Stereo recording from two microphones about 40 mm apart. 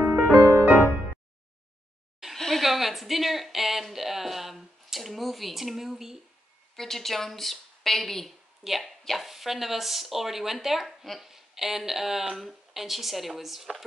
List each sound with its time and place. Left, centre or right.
0.1 s music: right
2.3 s a sound: centre
2.6 s speech: centre
6.8 s a woman's voice: centre